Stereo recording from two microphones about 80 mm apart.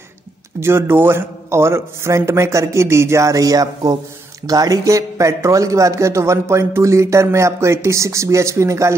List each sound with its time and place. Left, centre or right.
0.6 s speech: right